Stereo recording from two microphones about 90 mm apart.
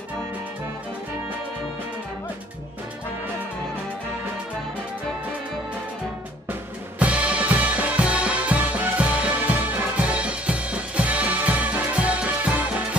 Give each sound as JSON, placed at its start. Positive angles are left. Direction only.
{"t": 7.0, "sound": "music", "side_deg": -15}